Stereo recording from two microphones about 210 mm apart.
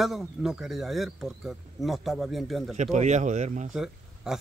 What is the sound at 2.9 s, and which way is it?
Speech, 35° right (ahead or behind).